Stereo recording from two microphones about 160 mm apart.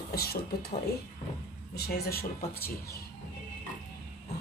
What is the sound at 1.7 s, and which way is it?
Speech, 75° left (ahead or behind).